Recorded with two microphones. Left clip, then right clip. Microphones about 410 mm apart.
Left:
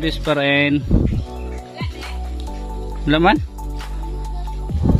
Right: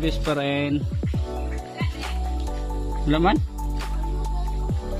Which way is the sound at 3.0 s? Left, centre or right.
Centre.